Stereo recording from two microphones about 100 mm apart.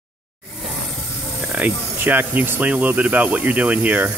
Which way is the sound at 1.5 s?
15° right (ahead or behind).